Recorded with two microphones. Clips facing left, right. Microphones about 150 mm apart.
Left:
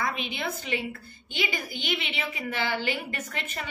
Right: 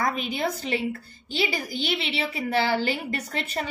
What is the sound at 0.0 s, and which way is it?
A woman's voice, 40° right (ahead or behind).